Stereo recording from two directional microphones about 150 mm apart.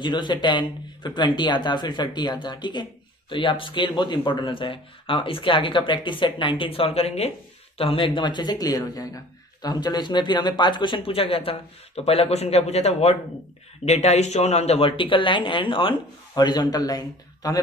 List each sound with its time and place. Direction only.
0.0 s speech: 30° left (ahead or behind)